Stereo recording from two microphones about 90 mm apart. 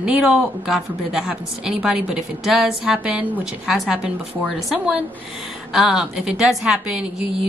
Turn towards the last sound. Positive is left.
turn(degrees=-5)  # may be behind; listen again after turning